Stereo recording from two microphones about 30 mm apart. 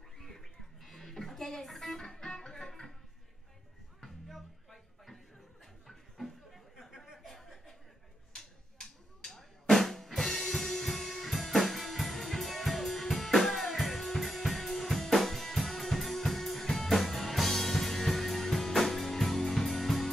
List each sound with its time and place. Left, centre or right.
0.8 s music: centre
2.0 s music: centre
4.0 s music: centre
5.9 s a sound: centre
7.2 s chuckle: centre
8.4 s drum: centre